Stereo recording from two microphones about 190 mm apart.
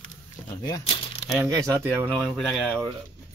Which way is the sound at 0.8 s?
30° left (ahead or behind).